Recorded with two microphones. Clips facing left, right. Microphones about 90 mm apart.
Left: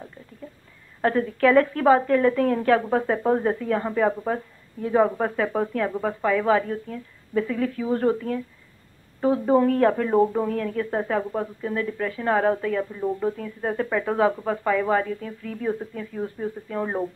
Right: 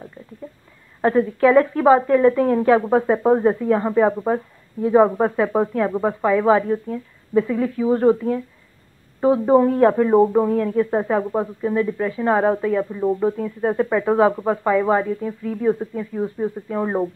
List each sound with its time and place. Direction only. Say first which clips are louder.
1.0 s speech: right 4 dB; 15° right (ahead or behind)